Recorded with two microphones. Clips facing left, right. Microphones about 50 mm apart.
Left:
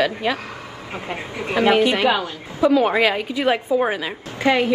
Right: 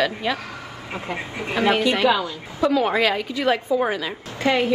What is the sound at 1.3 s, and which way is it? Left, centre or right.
Speech, left.